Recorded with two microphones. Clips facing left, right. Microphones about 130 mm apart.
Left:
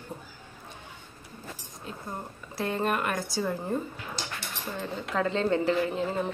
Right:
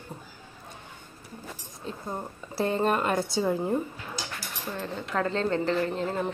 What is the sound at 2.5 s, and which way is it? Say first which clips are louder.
Speech: right 3 dB; 30° right (ahead or behind).